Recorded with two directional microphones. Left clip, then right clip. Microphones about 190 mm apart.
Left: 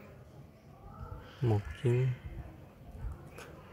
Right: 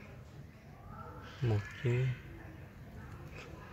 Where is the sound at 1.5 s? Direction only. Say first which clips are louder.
Left 4 dB; 25° left (ahead or behind).